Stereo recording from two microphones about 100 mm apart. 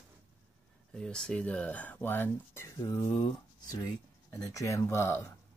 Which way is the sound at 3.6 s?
35° left (ahead or behind).